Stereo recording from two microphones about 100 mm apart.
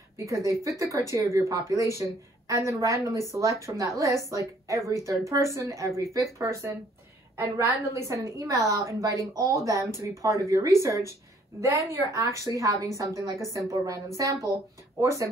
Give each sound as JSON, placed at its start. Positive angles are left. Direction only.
{"t": 0.2, "sound": "a woman's voice", "side_deg": -30}